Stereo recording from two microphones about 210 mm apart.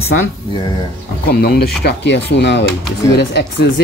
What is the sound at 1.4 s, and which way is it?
Speech, 50° left (ahead or behind).